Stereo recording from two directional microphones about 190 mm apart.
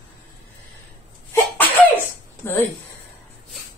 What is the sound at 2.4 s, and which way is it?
Speech, 15° left (ahead or behind).